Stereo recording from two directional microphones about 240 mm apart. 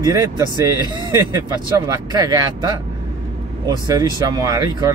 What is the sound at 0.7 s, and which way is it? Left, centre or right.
Speech, centre.